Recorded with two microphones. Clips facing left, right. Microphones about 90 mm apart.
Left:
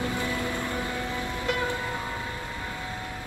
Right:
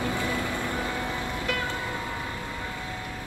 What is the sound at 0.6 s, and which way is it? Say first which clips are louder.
Vehicle: right 1 dB; 20° right (ahead or behind).